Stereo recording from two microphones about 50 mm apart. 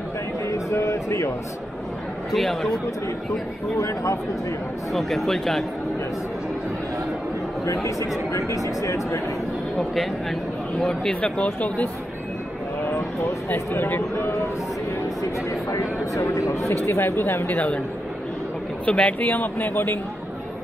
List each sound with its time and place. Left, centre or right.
0.5 s a sound: left
2.3 s speech: centre
3.7 s speech: left
4.9 s speech: centre
7.6 s speech: left
10.8 s speech: centre
11.4 s speech: left
13.5 s speech: left
15.7 s speech: left
16.6 s speech: left
18.9 s speech: centre
19.1 s speech: left